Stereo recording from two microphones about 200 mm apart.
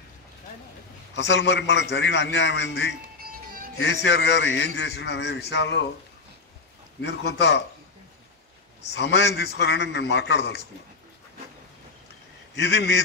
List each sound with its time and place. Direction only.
1.1 s a man's voice: 65° left (ahead or behind)
7.0 s a man's voice: 60° left (ahead or behind)
8.9 s a man's voice: 60° left (ahead or behind)
12.5 s a man's voice: 60° left (ahead or behind)